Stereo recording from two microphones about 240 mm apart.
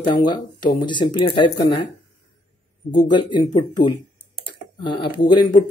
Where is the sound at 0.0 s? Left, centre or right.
Centre.